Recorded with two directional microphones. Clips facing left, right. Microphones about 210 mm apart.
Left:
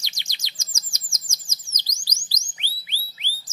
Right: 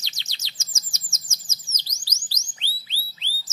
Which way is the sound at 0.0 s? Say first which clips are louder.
Left 1 dB; 15° left (ahead or behind).